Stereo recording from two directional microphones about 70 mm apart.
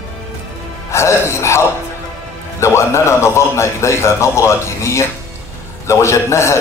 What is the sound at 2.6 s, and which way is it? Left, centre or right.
A man's voice, left.